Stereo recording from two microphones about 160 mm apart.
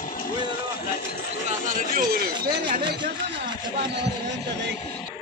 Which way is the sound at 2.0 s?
70° right (ahead or behind).